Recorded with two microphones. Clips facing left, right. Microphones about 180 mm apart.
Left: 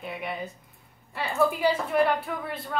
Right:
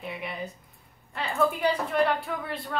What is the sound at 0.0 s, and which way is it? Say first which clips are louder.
A woman's voice: left 1 dB; centre (ahead or behind).